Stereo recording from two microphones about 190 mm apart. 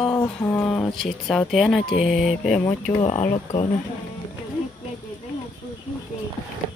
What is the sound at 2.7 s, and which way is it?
Speech, 30° left (ahead or behind).